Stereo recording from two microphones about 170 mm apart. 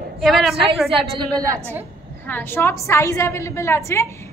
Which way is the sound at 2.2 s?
10° left (ahead or behind).